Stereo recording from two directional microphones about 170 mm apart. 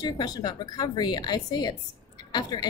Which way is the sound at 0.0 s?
25° left (ahead or behind).